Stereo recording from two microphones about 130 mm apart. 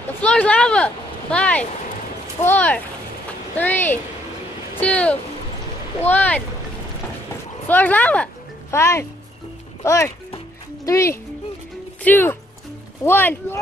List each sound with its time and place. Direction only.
0.2 s speech: 10° left (ahead or behind)
7.6 s speech: 15° left (ahead or behind)